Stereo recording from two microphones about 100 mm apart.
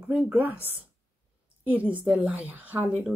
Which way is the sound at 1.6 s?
15° right (ahead or behind).